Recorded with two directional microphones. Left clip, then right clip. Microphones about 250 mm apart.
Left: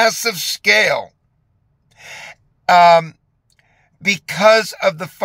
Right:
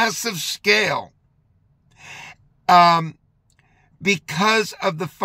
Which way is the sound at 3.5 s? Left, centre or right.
Centre.